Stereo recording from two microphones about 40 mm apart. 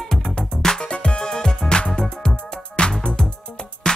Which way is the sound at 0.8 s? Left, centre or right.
Left.